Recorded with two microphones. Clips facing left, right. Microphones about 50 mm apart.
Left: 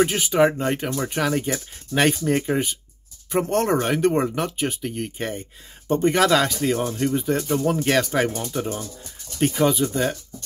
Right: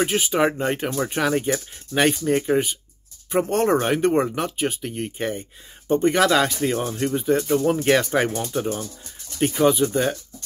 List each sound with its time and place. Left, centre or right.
0.0 s speech: centre